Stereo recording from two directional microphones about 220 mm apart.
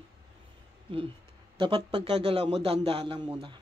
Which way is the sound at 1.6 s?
20° right (ahead or behind).